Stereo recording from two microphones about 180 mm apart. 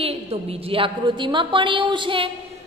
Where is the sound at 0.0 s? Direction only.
35° right (ahead or behind).